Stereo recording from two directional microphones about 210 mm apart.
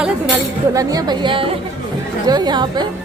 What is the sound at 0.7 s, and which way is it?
A woman's voice, 20° right (ahead or behind).